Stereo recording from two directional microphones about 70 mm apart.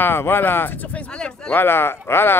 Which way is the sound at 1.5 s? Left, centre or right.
Left.